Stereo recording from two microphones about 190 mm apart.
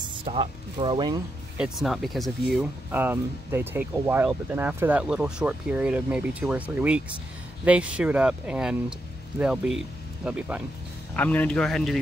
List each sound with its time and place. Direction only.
0.0 s speech: 25° right (ahead or behind)
1.6 s speech: centre (ahead or behind)
11.1 s speech: 10° left (ahead or behind)